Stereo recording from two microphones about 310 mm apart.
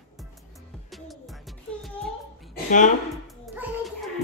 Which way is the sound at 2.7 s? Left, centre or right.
Left.